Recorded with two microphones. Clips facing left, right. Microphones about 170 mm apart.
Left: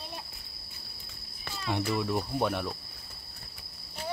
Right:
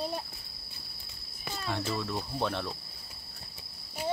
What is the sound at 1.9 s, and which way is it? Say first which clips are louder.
Speech: left 4 dB; 15° left (ahead or behind).